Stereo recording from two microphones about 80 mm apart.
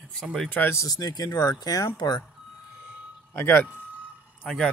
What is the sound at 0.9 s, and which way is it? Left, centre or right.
Speech, left.